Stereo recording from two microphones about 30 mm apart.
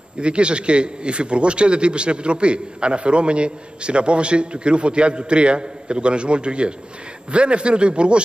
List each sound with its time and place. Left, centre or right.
0.2 s a man's voice: right